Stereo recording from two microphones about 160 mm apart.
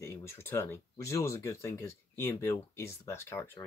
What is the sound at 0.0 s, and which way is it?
Speech, 15° left (ahead or behind).